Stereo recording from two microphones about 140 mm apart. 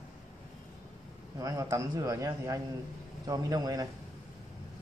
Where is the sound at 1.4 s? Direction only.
25° right (ahead or behind).